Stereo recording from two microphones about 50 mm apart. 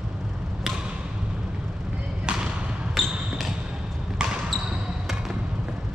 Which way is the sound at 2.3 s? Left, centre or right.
Right.